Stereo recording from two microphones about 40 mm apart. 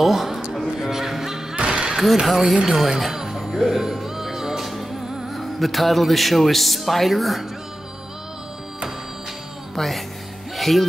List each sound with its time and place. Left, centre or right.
0.0 s speech: centre
0.7 s music: centre
1.6 s a sound: right
1.9 s speech: centre
2.8 s music: centre
5.3 s speech: centre
9.8 s speech: centre
10.5 s music: centre